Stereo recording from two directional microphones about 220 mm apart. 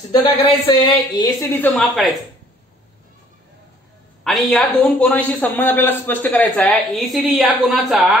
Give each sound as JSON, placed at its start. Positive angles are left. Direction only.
{"t": 0.1, "sound": "speech", "side_deg": 25}
{"t": 1.5, "sound": "a man's voice", "side_deg": 5}
{"t": 4.2, "sound": "a man's voice", "side_deg": 5}